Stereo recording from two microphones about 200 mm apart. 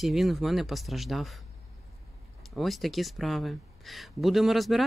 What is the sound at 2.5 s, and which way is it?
Speech, centre (ahead or behind).